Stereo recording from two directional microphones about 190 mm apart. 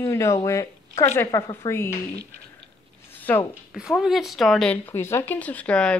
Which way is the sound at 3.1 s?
10° left (ahead or behind).